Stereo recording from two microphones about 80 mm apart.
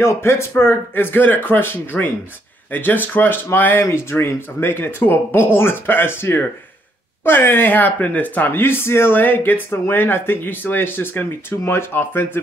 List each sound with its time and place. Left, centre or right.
0.0 s speech: left